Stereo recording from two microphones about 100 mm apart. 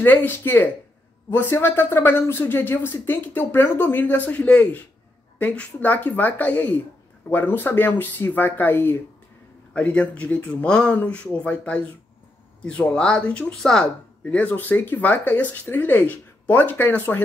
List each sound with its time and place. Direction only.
0.0 s speech: 20° left (ahead or behind)